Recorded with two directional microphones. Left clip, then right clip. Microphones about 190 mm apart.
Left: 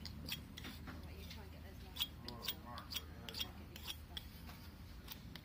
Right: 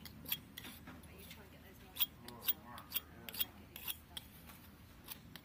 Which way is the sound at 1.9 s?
5° right (ahead or behind).